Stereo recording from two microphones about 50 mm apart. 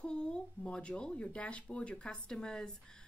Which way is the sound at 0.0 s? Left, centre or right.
Centre.